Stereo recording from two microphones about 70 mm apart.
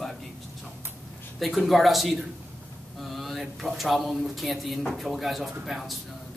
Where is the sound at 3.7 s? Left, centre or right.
Centre.